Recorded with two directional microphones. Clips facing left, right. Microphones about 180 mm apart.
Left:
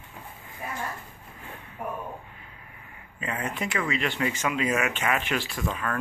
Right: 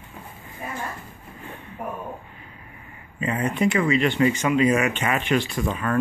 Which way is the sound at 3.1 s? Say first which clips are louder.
Right 7 dB; centre (ahead or behind).